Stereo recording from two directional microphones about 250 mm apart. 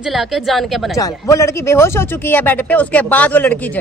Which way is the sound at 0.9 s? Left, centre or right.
Centre.